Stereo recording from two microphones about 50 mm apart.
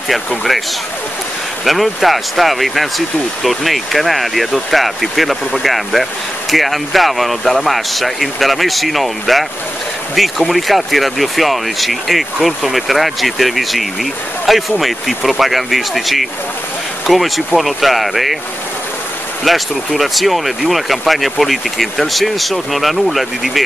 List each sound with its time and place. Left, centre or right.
0.3 s speech: centre
1.6 s speech: centre
10.5 s speech: centre
19.4 s speech: centre